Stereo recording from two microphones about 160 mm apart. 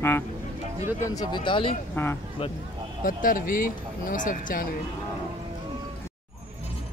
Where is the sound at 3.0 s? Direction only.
60° left (ahead or behind).